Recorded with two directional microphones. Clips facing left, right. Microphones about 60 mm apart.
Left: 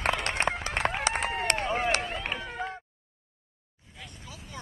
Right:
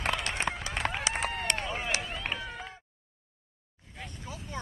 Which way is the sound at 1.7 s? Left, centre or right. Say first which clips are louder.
Left 6 dB; left.